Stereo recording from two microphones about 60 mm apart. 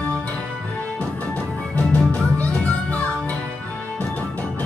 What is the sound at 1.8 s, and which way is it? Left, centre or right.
Music, centre.